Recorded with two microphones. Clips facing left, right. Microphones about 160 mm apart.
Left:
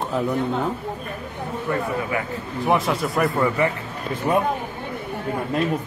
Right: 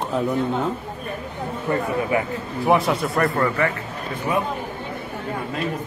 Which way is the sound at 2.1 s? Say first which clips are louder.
Right 4 dB; 25° right (ahead or behind).